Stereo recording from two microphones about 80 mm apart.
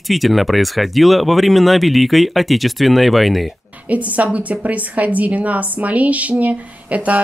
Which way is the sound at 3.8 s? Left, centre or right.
Centre.